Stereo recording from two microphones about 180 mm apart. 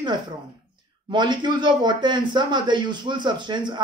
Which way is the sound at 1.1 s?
25° right (ahead or behind).